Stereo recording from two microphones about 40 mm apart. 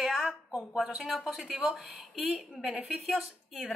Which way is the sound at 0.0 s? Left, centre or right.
Centre.